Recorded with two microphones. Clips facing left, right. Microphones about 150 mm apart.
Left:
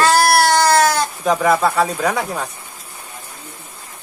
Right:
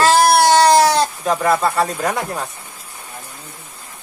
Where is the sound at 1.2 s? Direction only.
Centre (ahead or behind).